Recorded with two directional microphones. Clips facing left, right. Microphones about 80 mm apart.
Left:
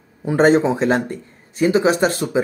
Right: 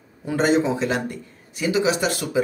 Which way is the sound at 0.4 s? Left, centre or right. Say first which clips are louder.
Left 5 dB; left.